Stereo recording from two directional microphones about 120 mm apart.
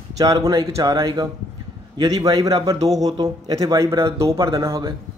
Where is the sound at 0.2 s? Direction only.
30° right (ahead or behind).